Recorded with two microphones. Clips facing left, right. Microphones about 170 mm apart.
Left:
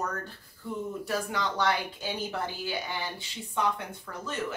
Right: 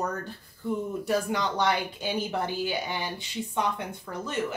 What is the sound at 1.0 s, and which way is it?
A woman's voice, 20° right (ahead or behind).